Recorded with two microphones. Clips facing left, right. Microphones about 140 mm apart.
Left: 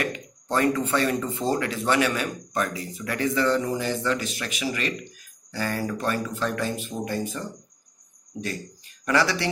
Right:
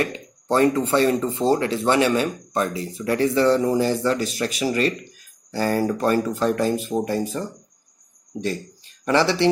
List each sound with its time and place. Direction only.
0.0 s a sound: 30° right (ahead or behind)
0.7 s speech: 30° right (ahead or behind)
9.0 s speech: 30° right (ahead or behind)